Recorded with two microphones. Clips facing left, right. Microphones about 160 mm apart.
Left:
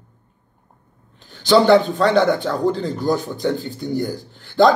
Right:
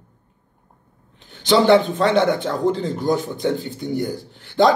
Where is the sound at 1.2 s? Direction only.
20° right (ahead or behind).